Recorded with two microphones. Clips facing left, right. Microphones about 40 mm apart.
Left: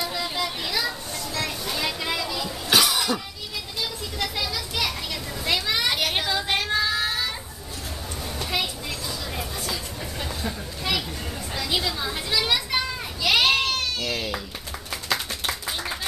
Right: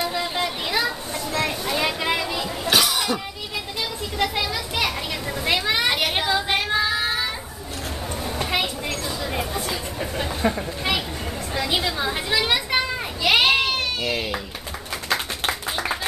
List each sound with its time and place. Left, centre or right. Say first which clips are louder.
0.0 s children playing: right 3 dB; right
2.7 s cough: even; centre
4.2 s a sound: right 5 dB; right
5.4 s child singing: right 3 dB; right
8.4 s a sound: right 3 dB; right
11.5 s children playing: right 3 dB; right
15.4 s clapping: right 4 dB; right